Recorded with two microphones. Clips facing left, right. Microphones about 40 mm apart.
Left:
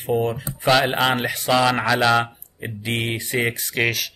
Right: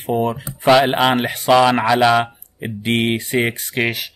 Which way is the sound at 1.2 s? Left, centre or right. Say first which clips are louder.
Right 6 dB; right.